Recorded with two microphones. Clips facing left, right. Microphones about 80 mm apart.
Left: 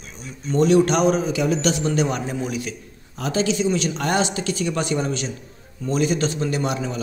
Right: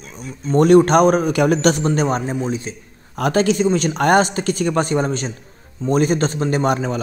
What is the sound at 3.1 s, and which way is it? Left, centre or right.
A man's voice, right.